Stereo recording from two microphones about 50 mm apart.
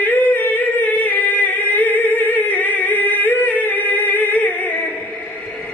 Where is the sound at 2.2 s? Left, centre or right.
Left.